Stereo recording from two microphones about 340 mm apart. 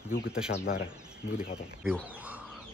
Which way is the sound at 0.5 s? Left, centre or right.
Left.